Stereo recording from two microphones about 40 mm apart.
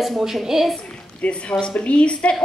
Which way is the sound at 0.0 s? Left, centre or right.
Centre.